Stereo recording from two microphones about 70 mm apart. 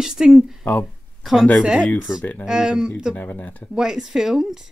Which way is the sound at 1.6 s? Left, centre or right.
Centre.